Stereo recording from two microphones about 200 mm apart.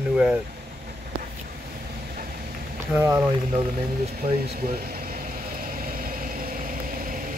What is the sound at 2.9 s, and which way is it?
Speech, 10° right (ahead or behind).